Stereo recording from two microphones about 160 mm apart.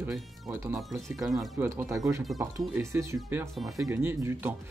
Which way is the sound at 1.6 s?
15° right (ahead or behind).